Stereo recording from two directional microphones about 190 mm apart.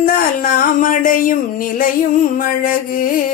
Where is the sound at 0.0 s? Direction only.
45° left (ahead or behind).